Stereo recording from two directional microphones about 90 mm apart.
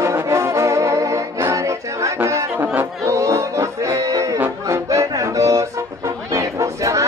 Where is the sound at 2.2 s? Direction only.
30° right (ahead or behind).